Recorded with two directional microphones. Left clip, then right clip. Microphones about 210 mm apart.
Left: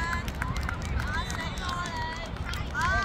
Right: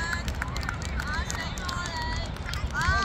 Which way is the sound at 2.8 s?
20° right (ahead or behind).